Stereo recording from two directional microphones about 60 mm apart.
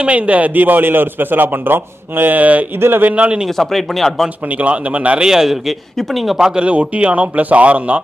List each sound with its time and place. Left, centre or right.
0.0 s a man's voice: right
3.4 s speech: centre
4.5 s speech: right
5.2 s a man's voice: centre